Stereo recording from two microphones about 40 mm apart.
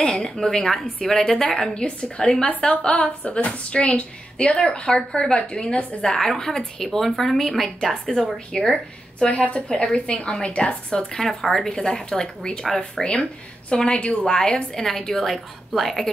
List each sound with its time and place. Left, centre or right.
0.2 s a woman's voice: centre
1.7 s a woman's voice: left
6.0 s a woman's voice: centre
9.2 s a woman's voice: left
11.1 s a woman's voice: centre
13.0 s a woman's voice: left; by 16.1 s centre